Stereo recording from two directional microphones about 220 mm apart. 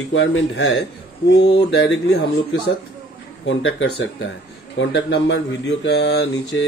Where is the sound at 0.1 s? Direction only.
55° left (ahead or behind).